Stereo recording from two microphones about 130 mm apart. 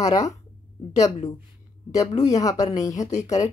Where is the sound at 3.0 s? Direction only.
65° left (ahead or behind).